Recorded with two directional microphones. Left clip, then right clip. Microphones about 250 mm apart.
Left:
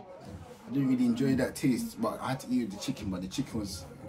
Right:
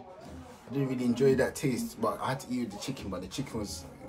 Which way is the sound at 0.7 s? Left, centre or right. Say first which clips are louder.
Left 2 dB; centre.